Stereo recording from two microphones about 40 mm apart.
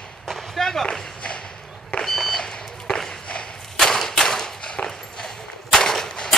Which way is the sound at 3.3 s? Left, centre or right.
Left.